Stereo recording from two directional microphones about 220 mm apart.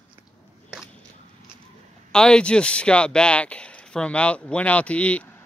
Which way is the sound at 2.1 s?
5° left (ahead or behind).